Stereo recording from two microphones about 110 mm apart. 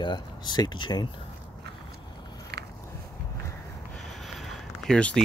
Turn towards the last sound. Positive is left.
turn(degrees=10)  # may be behind; listen again after turning